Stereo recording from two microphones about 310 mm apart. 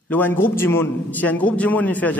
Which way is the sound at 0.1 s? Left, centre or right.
Centre.